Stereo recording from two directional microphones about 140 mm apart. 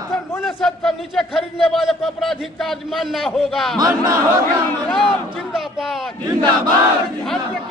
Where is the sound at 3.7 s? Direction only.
25° right (ahead or behind).